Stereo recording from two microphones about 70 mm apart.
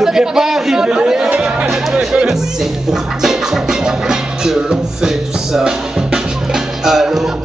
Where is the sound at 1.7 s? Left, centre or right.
Centre.